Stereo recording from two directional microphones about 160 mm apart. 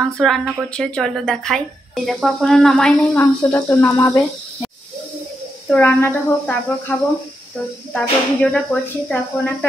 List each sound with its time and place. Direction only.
0.0 s speech: centre (ahead or behind)
3.2 s speech: 15° left (ahead or behind)
5.7 s speech: 10° left (ahead or behind)